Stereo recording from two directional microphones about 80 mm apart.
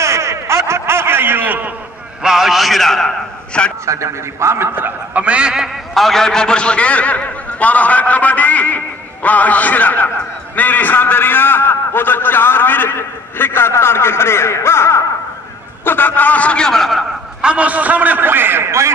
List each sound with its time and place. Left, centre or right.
0.0 s a sound: right
2.2 s a man's voice: centre
3.8 s a man's voice: right; by 6.0 s centre
6.0 s a man's voice: centre
17.4 s a man's voice: centre; by 18.9 s right